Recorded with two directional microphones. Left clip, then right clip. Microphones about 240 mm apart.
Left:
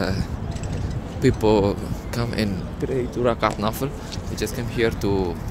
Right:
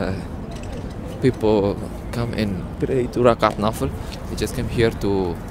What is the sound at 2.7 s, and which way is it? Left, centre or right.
Speech, centre.